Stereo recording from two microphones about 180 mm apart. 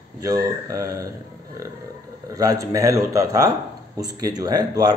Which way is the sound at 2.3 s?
20° right (ahead or behind).